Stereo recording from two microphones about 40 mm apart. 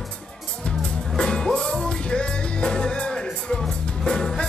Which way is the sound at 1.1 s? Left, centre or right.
Centre.